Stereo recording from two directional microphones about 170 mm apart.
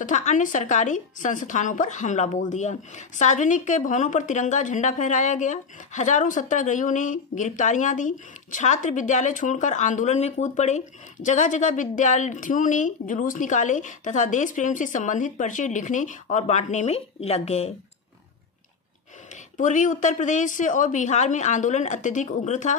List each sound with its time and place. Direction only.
0.0 s a woman's voice: 45° left (ahead or behind)
19.5 s a woman's voice: 50° left (ahead or behind)